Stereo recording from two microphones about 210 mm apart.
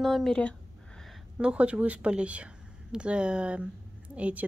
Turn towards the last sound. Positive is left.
turn(degrees=-5)  # may be behind; listen again after turning